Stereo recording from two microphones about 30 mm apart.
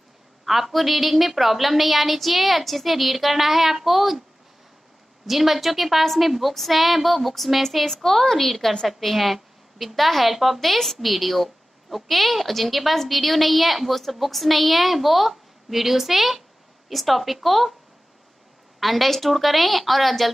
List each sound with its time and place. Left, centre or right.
0.5 s a woman's voice: centre
5.2 s a woman's voice: centre
18.8 s a woman's voice: centre